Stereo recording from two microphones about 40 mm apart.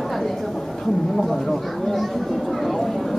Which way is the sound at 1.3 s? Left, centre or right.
Centre.